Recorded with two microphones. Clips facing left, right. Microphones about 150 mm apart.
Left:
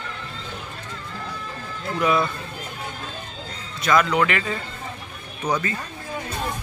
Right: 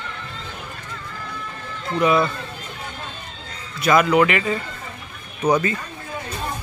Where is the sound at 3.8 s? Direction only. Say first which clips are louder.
Right 4 dB; 10° right (ahead or behind).